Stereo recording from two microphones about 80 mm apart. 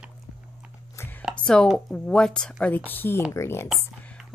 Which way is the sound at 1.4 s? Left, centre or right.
Centre.